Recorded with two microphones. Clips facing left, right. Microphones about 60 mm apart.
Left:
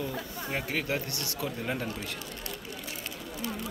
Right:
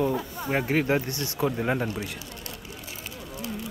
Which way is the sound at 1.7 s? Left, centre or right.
Centre.